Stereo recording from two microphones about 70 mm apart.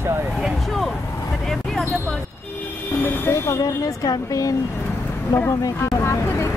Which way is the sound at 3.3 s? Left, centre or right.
Left.